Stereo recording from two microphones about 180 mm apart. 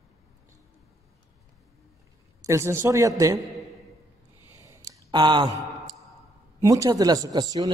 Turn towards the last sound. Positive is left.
turn(degrees=-20)  # may be behind; listen again after turning